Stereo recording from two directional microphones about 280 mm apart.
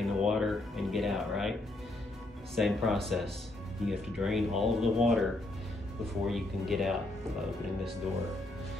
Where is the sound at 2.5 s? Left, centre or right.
Centre.